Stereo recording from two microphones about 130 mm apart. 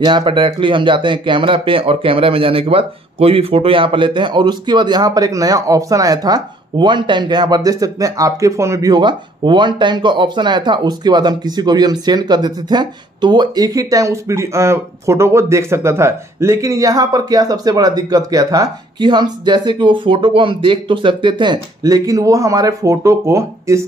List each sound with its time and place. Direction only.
0.0 s speech: 35° right (ahead or behind)